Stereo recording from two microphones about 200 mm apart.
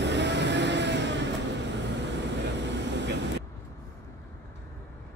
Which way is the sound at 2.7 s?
60° right (ahead or behind).